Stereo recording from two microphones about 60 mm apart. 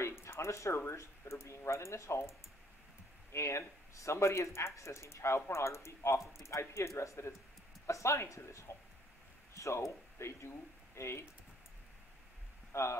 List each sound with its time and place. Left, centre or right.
0.2 s speech: left
12.7 s speech: left